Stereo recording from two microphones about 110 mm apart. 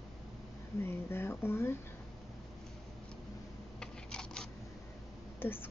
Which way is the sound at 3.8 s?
5° left (ahead or behind).